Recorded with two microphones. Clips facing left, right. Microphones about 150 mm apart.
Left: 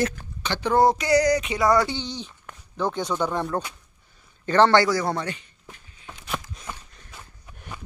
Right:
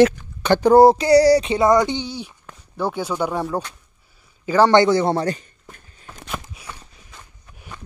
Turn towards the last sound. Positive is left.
turn(degrees=0)  # may be behind; listen again after turning